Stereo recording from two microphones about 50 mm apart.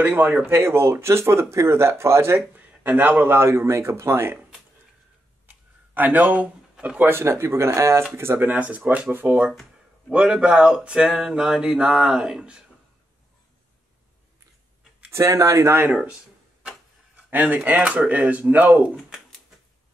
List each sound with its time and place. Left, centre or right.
0.0 s speech: right
0.5 s speech: right
2.3 s speech: right
3.3 s speech: right
5.5 s a sound: right
7.2 s speech: right
8.2 s speech: right
8.5 s speech: right
10.1 s speech: centre
15.0 s speech: right
17.1 s speech: right